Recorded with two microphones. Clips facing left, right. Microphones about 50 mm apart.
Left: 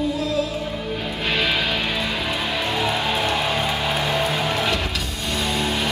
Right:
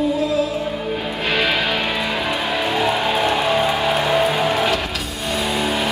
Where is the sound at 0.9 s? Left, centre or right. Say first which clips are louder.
Right 2 dB; centre.